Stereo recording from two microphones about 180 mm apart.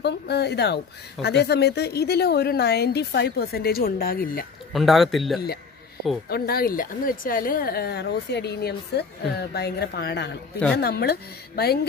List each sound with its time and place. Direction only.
0.0 s speech: 70° left (ahead or behind)
4.7 s a man's voice: centre (ahead or behind)
6.2 s speech: 60° left (ahead or behind)